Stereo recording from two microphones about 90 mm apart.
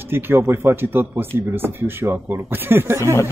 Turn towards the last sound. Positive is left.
turn(degrees=-30)  # may be behind; listen again after turning